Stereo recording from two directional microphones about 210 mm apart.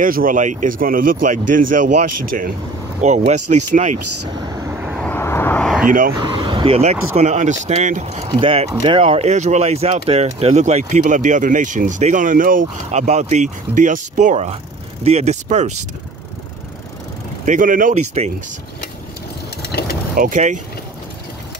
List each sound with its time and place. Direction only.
0.0 s speech: 40° right (ahead or behind)
4.6 s vehicle: 5° right (ahead or behind)
5.0 s vehicle: 10° left (ahead or behind)
5.9 s speech: 40° right (ahead or behind)
6.1 s speech: 25° right (ahead or behind)
17.5 s speech: 40° right (ahead or behind)
20.2 s speech: 35° right (ahead or behind)